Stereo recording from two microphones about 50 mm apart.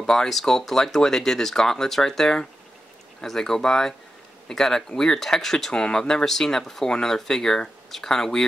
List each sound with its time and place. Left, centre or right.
0.0 s speech: centre